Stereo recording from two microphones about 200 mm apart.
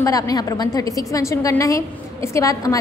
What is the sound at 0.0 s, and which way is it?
A woman's voice, 15° left (ahead or behind).